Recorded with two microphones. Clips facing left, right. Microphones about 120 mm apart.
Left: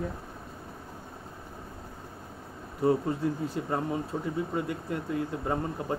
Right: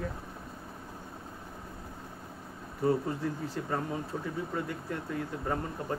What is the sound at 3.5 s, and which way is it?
Speech, 15° left (ahead or behind).